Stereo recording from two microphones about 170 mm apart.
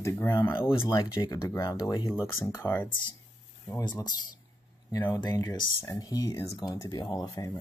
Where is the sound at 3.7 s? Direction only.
25° left (ahead or behind).